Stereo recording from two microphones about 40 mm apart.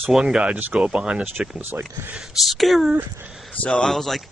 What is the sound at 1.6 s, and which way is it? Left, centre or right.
Speech, right.